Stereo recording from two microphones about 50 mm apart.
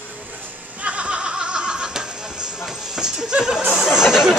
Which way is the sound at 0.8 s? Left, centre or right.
Right.